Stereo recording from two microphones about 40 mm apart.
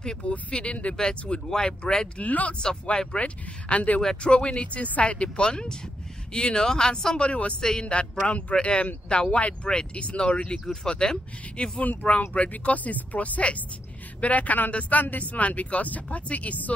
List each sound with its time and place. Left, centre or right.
0.0 s speech: centre
0.3 s speech: left
1.5 s speech: centre
2.2 s speech: left
2.6 s speech: left
4.0 s speech: centre
4.3 s speech: left
7.2 s speech: left
11.8 s speech: left